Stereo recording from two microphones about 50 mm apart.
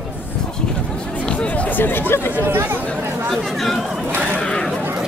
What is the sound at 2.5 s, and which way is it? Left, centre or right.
Chatter, right.